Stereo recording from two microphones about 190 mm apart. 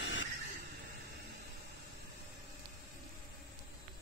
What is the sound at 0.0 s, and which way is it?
Vehicle, 80° left.